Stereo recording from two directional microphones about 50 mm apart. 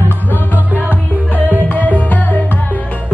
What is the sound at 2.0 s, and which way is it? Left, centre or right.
Music, left.